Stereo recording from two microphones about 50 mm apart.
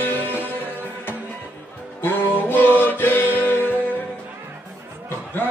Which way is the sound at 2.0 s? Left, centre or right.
Left.